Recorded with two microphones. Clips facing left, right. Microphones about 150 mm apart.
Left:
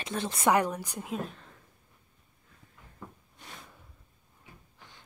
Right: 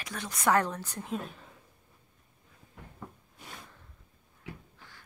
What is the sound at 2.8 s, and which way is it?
Cupboard open or close, 75° right (ahead or behind).